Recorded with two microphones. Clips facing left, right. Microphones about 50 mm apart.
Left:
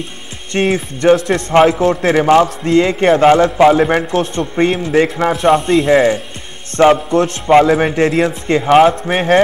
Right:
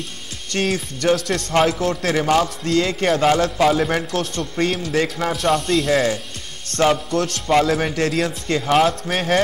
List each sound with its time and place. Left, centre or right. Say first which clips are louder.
0.5 s a man's voice: left 7 dB; left